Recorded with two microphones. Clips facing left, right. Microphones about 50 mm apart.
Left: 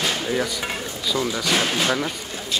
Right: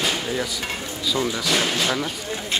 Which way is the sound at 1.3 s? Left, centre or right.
Centre.